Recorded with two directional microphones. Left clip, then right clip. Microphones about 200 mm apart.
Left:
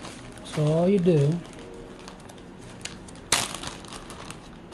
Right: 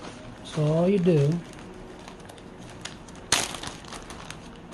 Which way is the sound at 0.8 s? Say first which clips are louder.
Left 1 dB; centre (ahead or behind).